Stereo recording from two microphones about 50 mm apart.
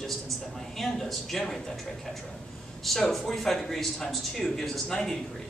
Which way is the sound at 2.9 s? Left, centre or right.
Centre.